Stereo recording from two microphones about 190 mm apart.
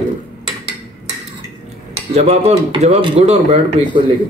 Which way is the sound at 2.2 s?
35° right (ahead or behind).